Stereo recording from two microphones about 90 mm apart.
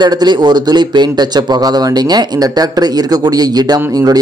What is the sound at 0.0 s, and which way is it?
Speech, 55° right (ahead or behind).